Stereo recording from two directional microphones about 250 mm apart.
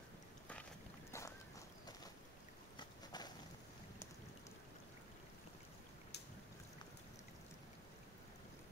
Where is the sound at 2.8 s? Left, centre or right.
Centre.